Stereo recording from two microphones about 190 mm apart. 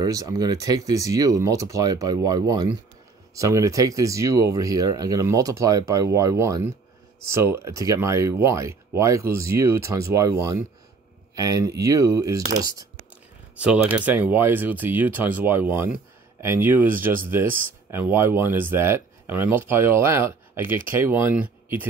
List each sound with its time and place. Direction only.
0.0 s speech: 20° right (ahead or behind)
13.6 s speech: 5° right (ahead or behind)